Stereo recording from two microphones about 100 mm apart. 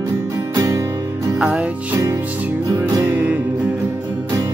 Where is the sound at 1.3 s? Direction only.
15° right (ahead or behind).